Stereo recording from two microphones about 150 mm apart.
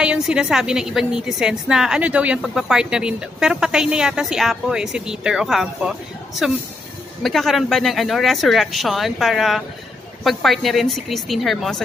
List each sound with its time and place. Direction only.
0.0 s a woman's voice: 5° right (ahead or behind)
7.2 s a woman's voice: centre (ahead or behind)